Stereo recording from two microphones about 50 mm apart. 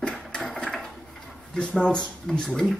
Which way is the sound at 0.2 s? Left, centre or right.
Centre.